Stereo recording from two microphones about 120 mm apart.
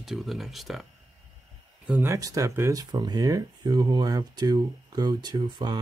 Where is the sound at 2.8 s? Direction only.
35° right (ahead or behind).